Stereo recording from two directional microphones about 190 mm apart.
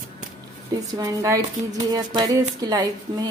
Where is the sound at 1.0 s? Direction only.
20° right (ahead or behind).